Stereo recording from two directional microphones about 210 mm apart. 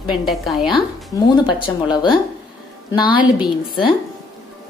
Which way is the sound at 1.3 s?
20° left (ahead or behind).